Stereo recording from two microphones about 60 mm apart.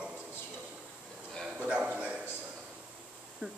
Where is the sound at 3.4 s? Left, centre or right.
Centre.